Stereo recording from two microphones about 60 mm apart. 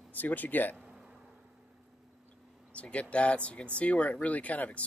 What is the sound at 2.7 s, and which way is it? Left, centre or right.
Speech, left.